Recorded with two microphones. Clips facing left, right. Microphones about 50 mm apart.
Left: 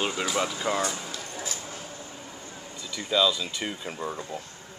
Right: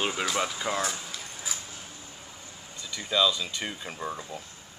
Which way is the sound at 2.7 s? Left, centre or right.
Centre.